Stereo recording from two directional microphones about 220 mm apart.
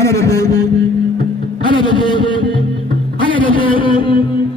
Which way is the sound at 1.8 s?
20° left (ahead or behind).